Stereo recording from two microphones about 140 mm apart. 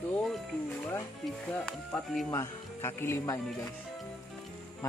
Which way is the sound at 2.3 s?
20° left (ahead or behind).